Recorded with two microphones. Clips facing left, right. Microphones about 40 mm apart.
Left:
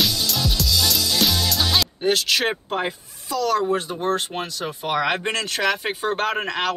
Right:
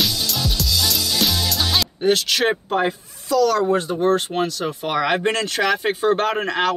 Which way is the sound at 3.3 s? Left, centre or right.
Centre.